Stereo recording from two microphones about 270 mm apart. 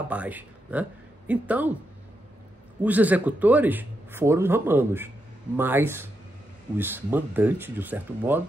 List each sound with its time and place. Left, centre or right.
0.1 s speech: centre
2.8 s a man's voice: centre